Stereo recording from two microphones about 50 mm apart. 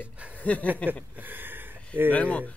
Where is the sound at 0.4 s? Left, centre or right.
Left.